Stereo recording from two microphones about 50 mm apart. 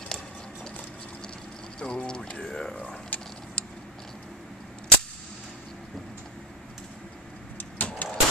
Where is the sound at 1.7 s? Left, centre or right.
Centre.